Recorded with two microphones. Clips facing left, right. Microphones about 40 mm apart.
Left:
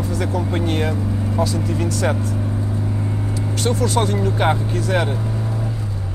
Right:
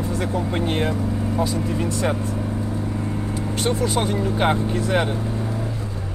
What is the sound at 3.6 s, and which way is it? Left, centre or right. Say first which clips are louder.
Speech: left 3 dB; centre.